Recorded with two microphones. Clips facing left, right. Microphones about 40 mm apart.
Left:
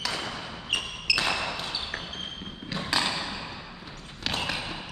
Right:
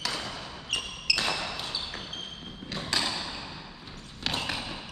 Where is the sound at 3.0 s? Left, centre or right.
Left.